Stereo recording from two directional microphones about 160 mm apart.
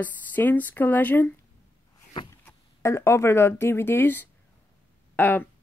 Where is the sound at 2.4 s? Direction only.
15° left (ahead or behind).